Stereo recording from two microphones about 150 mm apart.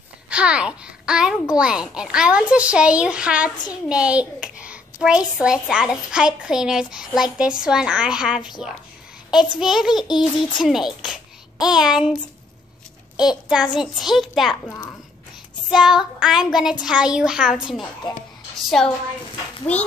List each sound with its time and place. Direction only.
0.3 s a child's voice: 5° right (ahead or behind)
13.5 s a child's voice: 5° right (ahead or behind)
15.7 s a child's voice: 5° right (ahead or behind)
18.0 s speech: 30° left (ahead or behind)
18.8 s a child's voice: 5° left (ahead or behind)